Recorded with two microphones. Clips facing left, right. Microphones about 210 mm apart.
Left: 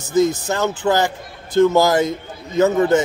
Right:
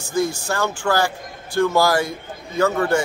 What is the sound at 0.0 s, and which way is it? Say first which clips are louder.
A man's voice: left 5 dB; 20° left (ahead or behind).